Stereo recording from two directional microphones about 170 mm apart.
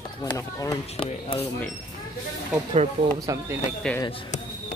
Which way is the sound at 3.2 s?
20° right (ahead or behind).